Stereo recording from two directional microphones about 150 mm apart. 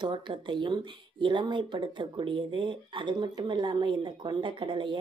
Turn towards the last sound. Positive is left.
turn(degrees=-35)  # may be behind; listen again after turning